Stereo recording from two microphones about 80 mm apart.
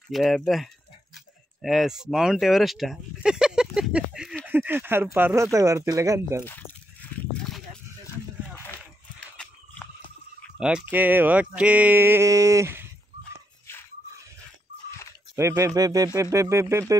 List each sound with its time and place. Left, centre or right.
0.1 s speech: centre
4.5 s speech: right
7.4 s a sound: centre
9.2 s a sound: centre
10.6 s speech: centre
12.3 s speech: right
15.3 s speech: right